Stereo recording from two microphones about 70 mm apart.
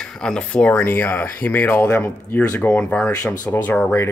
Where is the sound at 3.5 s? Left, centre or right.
Left.